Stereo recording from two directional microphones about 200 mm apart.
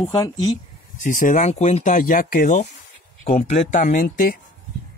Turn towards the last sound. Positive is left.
turn(degrees=40)  # may be behind; listen again after turning